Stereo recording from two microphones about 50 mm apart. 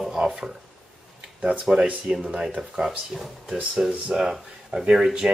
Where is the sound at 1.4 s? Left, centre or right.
Right.